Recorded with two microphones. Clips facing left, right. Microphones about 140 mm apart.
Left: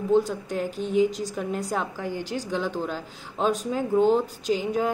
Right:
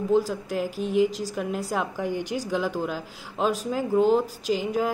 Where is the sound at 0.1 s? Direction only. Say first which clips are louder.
Left 1 dB; 5° right (ahead or behind).